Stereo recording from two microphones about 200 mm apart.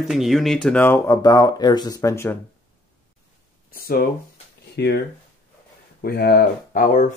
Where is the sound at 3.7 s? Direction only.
45° left (ahead or behind).